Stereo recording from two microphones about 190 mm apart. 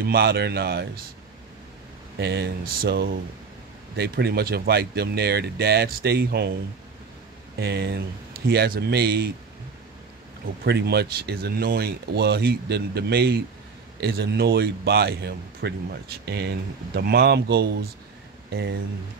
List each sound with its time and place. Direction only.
0.0 s speech: 55° right (ahead or behind)
2.1 s speech: 60° right (ahead or behind)
7.5 s speech: 60° right (ahead or behind)
10.4 s speech: 55° right (ahead or behind)